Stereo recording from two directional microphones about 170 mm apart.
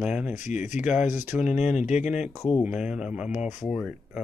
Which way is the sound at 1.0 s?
45° left (ahead or behind).